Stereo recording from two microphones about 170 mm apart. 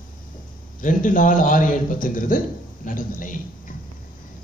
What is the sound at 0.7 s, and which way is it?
A man's voice, 50° left (ahead or behind).